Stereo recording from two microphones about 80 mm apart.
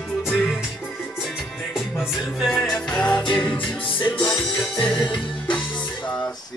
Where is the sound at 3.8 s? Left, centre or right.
Left.